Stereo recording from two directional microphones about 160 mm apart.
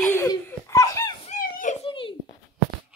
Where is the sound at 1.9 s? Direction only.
30° left (ahead or behind).